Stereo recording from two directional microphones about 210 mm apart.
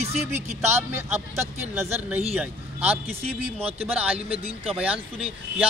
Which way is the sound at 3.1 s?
30° right (ahead or behind).